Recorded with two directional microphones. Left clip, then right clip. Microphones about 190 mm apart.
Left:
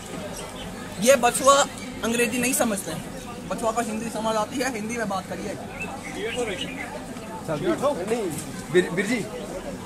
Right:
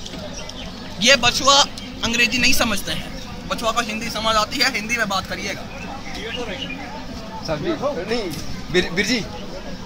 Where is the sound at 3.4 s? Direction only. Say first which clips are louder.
Right 4 dB; 5° right (ahead or behind).